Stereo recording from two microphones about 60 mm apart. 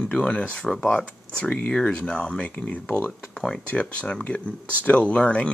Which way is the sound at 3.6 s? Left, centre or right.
Left.